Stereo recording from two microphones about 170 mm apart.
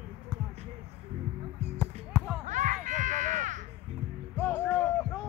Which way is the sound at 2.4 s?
45° right (ahead or behind).